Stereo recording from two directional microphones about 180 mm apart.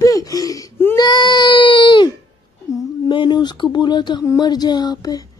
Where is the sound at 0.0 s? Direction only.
20° left (ahead or behind).